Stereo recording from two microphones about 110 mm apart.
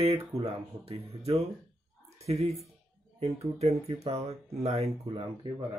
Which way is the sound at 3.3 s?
80° right.